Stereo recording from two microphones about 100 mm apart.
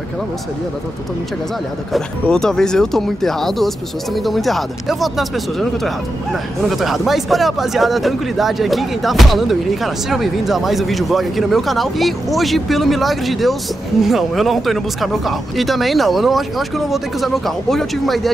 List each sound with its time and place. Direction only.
1.9 s speech: 5° left (ahead or behind)
6.8 s speech: centre (ahead or behind)